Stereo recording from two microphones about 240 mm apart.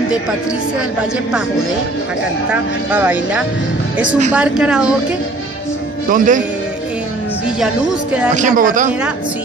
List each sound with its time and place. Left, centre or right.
2.5 s speech: centre
6.0 s speech: right
7.6 s speech: centre
8.4 s speech: right